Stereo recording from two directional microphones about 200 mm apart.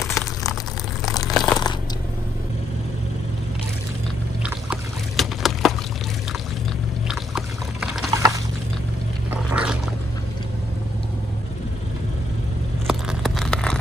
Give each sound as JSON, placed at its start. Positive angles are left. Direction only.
{"t": 1.3, "sound": "crunch", "side_deg": 0}
{"t": 4.4, "sound": "boat", "side_deg": -5}
{"t": 7.1, "sound": "boat", "side_deg": 0}
{"t": 8.1, "sound": "a sound", "side_deg": -15}
{"t": 9.3, "sound": "boat", "side_deg": -5}
{"t": 12.8, "sound": "a sound", "side_deg": 0}